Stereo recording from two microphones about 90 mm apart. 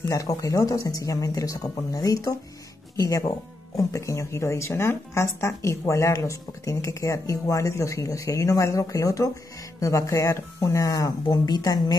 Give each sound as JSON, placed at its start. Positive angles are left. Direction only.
{"t": 0.1, "sound": "speech", "side_deg": 40}